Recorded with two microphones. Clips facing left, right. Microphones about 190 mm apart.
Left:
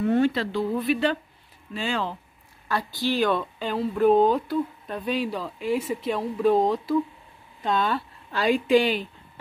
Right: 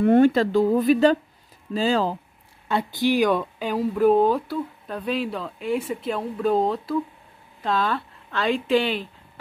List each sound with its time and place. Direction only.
0.0 s speech: 50° right (ahead or behind)
2.7 s speech: 20° right (ahead or behind); by 9.1 s 5° left (ahead or behind)